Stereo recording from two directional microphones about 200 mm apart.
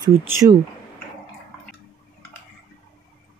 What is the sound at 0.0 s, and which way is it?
Speech, 20° right (ahead or behind).